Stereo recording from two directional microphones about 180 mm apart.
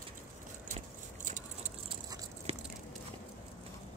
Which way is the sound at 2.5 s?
35° right (ahead or behind).